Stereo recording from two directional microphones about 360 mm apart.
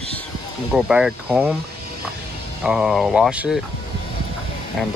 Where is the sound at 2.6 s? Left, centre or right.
Centre.